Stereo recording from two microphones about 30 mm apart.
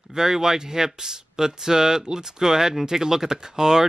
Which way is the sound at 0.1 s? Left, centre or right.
Centre.